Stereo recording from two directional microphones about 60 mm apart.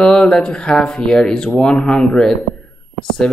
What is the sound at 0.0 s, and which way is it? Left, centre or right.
Speech, centre.